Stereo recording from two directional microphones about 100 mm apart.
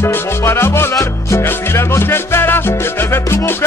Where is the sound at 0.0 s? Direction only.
25° left (ahead or behind).